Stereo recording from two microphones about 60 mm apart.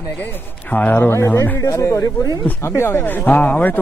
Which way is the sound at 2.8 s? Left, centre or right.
Left.